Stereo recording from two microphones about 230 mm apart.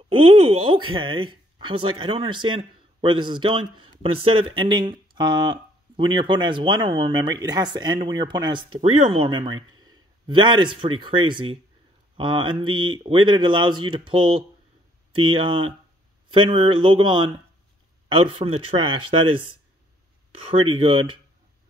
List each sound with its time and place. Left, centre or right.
0.1 s speech: right
20.7 s speech: right